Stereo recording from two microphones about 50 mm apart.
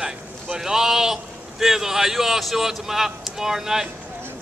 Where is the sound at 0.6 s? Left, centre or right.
Centre.